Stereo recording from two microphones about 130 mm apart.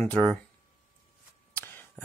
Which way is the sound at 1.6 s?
15° left (ahead or behind).